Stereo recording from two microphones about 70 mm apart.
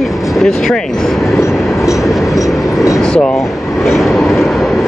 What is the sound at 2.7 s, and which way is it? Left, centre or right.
Vehicle, left.